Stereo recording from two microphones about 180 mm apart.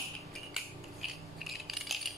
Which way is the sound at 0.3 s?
Centre (ahead or behind).